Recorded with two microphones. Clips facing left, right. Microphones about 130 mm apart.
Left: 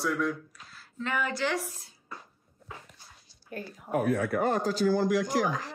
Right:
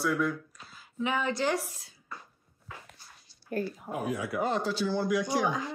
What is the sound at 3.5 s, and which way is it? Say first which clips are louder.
Speech: right 7 dB; 50° right (ahead or behind).